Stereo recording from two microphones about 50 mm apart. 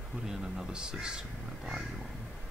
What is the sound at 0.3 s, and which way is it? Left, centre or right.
Speech, centre.